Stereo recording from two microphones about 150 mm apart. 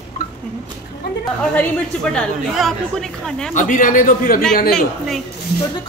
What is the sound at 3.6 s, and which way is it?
Speech, 60° left (ahead or behind).